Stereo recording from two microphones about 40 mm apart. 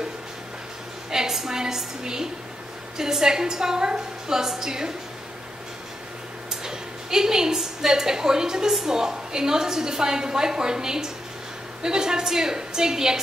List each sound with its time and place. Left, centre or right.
1.1 s a woman's voice: centre
6.6 s a woman's voice: centre